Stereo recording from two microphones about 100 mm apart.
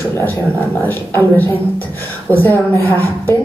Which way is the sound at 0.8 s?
20° left (ahead or behind).